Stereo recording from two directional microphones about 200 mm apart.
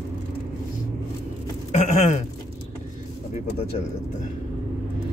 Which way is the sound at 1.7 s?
35° left (ahead or behind).